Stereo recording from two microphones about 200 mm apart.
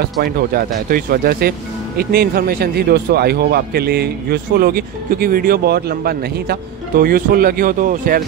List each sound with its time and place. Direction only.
0.0 s speech: 50° right (ahead or behind)